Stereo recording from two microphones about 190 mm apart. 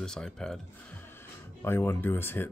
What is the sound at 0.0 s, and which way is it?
Speech, 5° left (ahead or behind).